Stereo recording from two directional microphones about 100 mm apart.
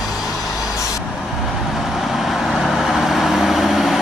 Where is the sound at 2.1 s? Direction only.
Centre (ahead or behind).